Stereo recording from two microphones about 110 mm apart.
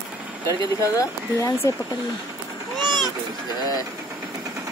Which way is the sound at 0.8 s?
30° left (ahead or behind).